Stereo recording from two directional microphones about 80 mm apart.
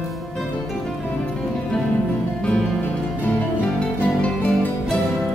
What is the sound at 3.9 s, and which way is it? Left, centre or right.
Music, centre.